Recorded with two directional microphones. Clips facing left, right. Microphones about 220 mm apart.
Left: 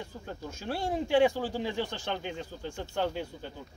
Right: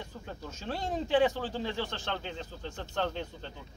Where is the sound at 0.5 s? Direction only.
10° left (ahead or behind).